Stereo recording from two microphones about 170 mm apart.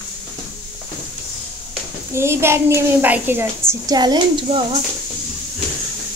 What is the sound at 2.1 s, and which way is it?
A child's voice, 15° right (ahead or behind).